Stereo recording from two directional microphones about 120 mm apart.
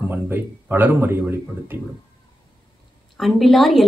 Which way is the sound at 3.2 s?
Centre (ahead or behind).